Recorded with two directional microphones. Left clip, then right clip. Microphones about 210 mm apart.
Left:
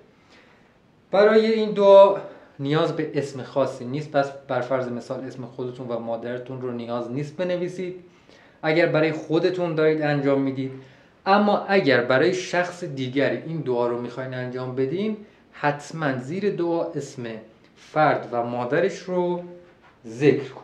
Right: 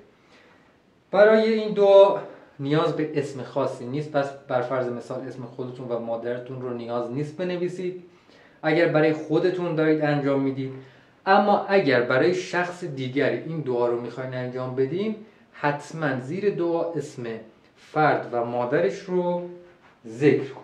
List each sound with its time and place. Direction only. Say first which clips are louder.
1.1 s speech: even; 55° left (ahead or behind)